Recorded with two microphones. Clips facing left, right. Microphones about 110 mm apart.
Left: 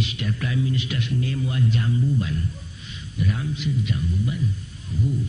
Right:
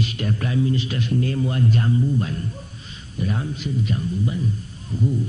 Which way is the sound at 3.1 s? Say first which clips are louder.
Right 1 dB; 35° right (ahead or behind).